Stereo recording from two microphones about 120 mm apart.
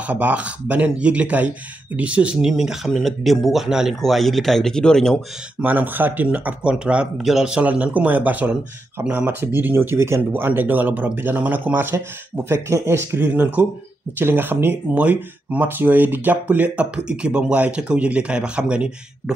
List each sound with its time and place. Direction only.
0.0 s speech: 10° right (ahead or behind); by 5.2 s 5° left (ahead or behind)
5.6 s speech: 15° right (ahead or behind)